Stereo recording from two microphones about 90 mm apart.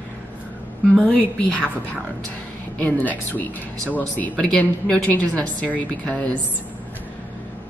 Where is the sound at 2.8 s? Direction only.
20° left (ahead or behind).